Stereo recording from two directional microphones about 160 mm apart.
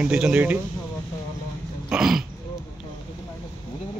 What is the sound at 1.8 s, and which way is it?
Throat clearing, 5° right (ahead or behind).